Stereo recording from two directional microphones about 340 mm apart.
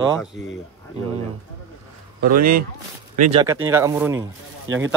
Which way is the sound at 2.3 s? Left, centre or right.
Right.